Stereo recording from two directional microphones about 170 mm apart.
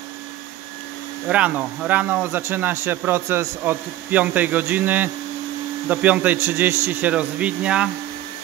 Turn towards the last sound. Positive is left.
turn(degrees=-5)  # may be behind; listen again after turning